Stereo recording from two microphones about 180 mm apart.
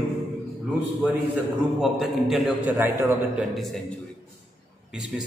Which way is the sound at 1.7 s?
Centre (ahead or behind).